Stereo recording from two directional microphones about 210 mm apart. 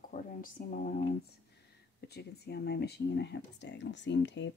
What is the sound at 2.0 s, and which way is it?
Speech, 50° left (ahead or behind).